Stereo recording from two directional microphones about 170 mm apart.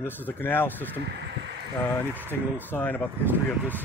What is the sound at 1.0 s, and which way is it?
Speech, 75° right (ahead or behind).